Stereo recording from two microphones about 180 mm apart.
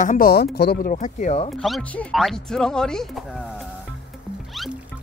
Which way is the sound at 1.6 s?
5° left (ahead or behind).